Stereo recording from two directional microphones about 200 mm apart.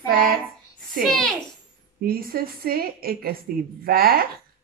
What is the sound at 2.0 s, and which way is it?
A woman's voice, 45° right (ahead or behind).